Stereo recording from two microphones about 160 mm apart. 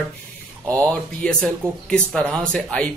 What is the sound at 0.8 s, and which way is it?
A man's voice, 5° left (ahead or behind).